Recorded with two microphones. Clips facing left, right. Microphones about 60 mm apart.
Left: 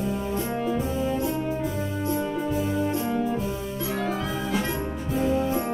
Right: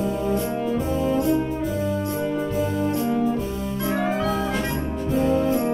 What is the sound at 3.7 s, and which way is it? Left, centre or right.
Music, right.